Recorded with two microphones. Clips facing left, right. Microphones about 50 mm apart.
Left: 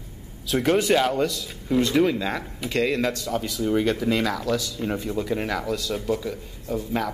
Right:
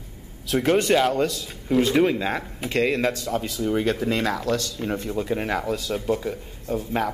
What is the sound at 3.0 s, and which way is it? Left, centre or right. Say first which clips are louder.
Speech: right 1 dB; right.